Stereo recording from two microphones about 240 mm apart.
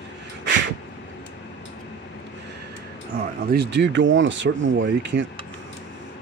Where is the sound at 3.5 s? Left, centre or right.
Right.